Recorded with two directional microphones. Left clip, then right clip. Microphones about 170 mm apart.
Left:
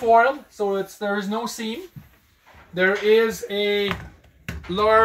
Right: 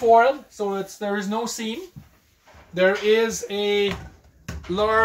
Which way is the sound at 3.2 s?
20° left (ahead or behind).